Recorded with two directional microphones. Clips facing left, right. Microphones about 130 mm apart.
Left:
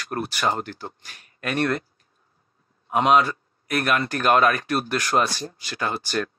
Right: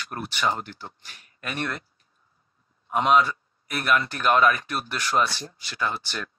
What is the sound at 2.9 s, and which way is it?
Speech, 60° left (ahead or behind).